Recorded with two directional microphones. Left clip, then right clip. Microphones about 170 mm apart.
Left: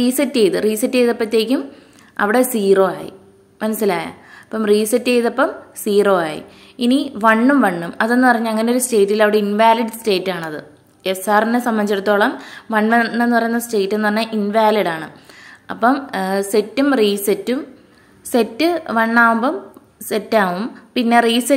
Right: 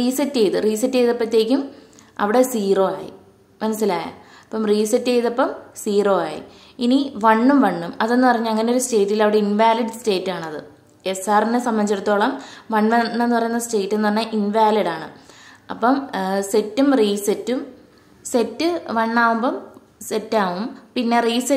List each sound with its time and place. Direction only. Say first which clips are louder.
0.0 s a woman's voice: left 3 dB; 15° left (ahead or behind)